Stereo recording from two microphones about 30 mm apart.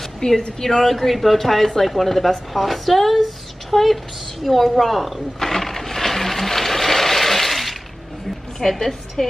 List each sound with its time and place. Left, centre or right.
0.2 s a woman's voice: left
0.6 s a woman's voice: centre
5.4 s a sound: centre
8.6 s a woman's voice: centre